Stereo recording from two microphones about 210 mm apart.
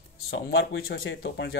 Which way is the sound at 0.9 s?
55° left (ahead or behind).